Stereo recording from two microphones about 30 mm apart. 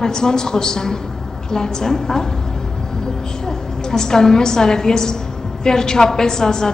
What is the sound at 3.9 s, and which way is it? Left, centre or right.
A woman's voice, centre.